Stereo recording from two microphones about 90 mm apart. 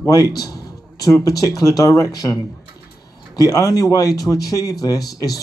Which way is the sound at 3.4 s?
40° left (ahead or behind).